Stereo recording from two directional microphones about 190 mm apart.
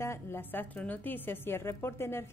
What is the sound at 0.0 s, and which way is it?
A woman's voice, 15° left (ahead or behind).